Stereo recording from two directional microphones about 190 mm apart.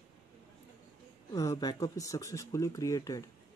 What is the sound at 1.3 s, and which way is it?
Speech, 20° left (ahead or behind).